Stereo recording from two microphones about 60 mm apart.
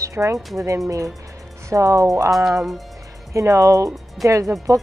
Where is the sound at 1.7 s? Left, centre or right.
Right.